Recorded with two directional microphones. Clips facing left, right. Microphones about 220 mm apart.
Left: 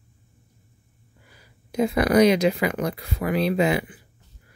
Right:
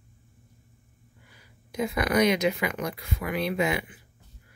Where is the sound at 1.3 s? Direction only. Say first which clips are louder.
Left 7 dB; 30° left (ahead or behind).